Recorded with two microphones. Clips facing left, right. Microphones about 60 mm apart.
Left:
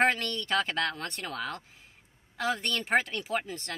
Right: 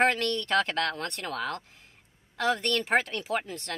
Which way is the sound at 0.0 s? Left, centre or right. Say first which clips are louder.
Right 2 dB; centre.